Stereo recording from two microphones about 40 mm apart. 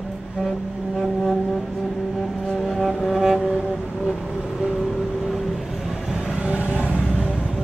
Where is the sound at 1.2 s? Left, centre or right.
Centre.